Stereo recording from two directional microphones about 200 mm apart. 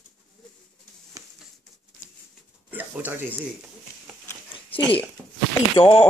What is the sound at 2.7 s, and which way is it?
Speech, 10° right (ahead or behind).